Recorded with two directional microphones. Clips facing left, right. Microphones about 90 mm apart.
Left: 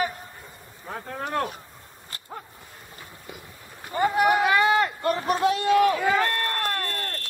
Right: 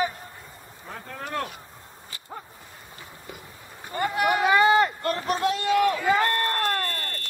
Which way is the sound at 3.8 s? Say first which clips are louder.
Left 4 dB; 10° left (ahead or behind).